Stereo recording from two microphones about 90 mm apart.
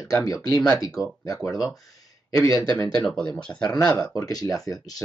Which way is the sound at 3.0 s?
10° left (ahead or behind).